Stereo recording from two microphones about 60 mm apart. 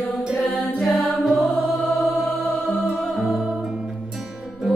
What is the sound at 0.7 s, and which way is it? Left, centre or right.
Music, centre.